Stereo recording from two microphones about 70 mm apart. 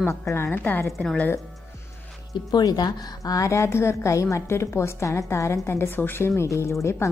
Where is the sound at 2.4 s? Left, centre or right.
Left.